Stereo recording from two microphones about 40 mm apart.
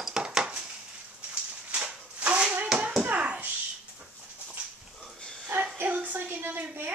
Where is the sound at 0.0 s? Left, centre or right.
Centre.